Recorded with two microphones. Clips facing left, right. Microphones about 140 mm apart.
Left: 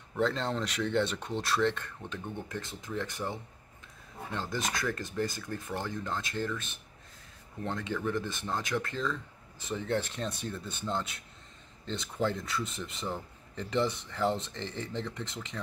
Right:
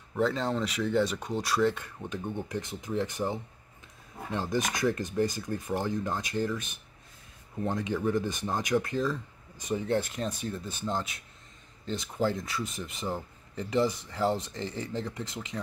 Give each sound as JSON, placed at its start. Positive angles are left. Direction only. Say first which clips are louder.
{"t": 0.1, "sound": "speech", "louder": "right 2 dB", "side_deg": -5}